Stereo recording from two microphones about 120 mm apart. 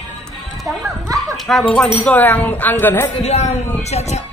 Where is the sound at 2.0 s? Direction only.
15° left (ahead or behind).